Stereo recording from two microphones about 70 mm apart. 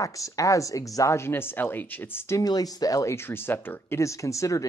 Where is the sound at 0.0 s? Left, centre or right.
Left.